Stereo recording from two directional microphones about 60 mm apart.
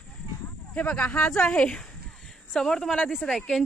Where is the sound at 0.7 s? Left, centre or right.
Left.